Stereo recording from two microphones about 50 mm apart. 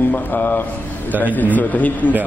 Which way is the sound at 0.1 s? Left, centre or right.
Left.